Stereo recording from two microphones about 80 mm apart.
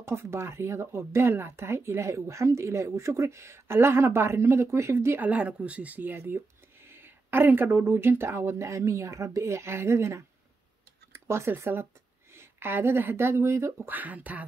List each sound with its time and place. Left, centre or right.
0.0 s speech: right
5.3 s speech: centre; by 13.8 s right
13.8 s speech: right